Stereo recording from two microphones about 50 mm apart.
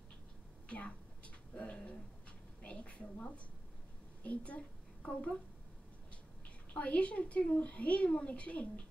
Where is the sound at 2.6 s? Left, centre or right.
Left.